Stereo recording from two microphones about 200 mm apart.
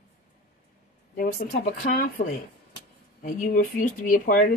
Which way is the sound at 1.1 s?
45° left (ahead or behind).